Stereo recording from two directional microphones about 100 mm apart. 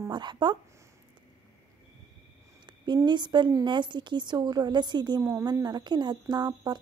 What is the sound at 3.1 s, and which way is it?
A woman's voice, 50° right (ahead or behind).